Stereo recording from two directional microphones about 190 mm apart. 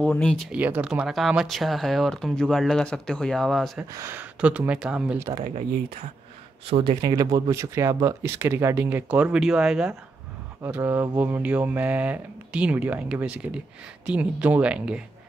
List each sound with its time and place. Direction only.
0.0 s speech: 5° left (ahead or behind)
3.9 s speech: 10° right (ahead or behind)
5.4 s speech: 40° right (ahead or behind); by 15.0 s 5° right (ahead or behind)